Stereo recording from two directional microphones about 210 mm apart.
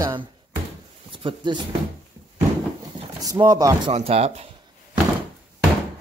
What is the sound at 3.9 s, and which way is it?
Speech, 30° right (ahead or behind).